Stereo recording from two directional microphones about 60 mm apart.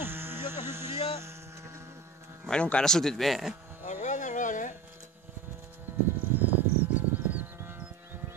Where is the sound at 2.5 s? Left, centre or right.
Centre.